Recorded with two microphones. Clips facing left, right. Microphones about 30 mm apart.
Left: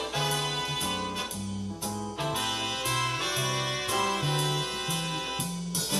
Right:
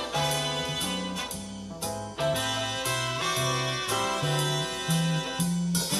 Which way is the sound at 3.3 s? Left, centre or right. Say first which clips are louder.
Right 2 dB; centre.